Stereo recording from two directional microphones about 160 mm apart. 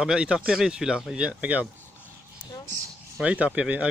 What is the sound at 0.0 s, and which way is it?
Speech, 5° right (ahead or behind).